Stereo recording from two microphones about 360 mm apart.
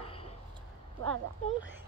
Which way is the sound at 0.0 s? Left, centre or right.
Centre.